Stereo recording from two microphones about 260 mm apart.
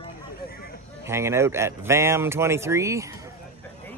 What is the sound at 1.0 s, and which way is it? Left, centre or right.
Speech, centre.